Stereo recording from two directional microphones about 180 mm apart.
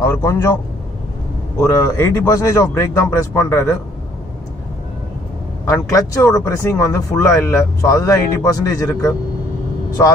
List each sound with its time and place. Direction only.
0.0 s speech: 15° left (ahead or behind)
1.6 s speech: 15° left (ahead or behind)
5.7 s speech: 20° left (ahead or behind)